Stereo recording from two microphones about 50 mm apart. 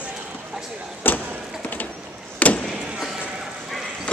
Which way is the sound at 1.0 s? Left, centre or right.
Left.